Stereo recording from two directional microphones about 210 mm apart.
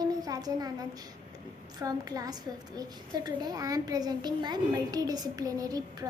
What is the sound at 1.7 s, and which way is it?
A woman's voice, 20° right (ahead or behind).